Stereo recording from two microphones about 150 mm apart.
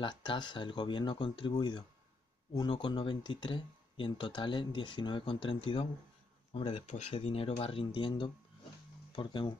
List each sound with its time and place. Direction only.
0.0 s speech: 30° left (ahead or behind)